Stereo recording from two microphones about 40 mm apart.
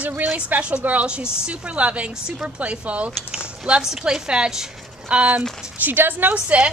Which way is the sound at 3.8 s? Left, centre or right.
Centre.